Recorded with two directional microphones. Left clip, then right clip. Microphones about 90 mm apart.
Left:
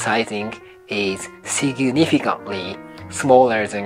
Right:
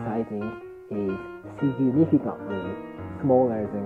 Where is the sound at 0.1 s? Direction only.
70° right (ahead or behind).